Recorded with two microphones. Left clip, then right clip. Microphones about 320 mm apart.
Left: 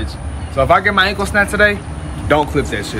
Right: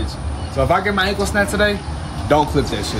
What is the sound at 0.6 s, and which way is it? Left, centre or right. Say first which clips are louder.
Speech: left 5 dB; centre.